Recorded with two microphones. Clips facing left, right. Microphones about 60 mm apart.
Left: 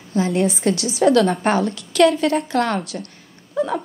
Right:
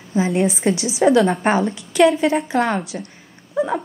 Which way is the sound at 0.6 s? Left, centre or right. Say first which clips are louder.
Right 1 dB; centre.